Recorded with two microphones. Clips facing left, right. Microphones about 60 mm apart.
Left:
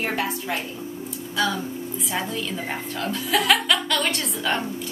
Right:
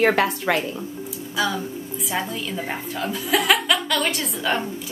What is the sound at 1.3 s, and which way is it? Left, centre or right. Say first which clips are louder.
A woman's voice: even; centre.